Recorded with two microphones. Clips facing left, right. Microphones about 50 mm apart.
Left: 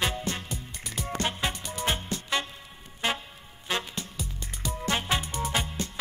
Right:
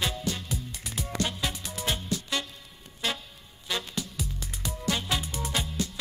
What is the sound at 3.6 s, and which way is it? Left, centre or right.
Music, left.